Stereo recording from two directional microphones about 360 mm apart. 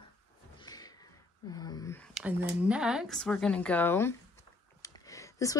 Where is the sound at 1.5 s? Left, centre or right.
Centre.